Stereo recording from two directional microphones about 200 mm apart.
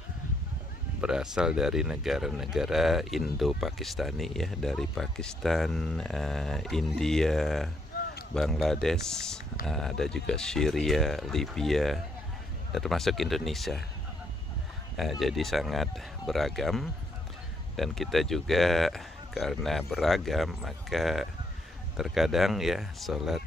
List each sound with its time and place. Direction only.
1.0 s speech: 5° right (ahead or behind)
7.9 s a sound: 50° left (ahead or behind)
8.4 s speech: centre (ahead or behind)
15.0 s speech: centre (ahead or behind)